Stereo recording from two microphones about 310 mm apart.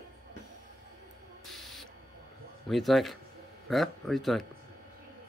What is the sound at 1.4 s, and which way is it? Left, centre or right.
Rodents, centre.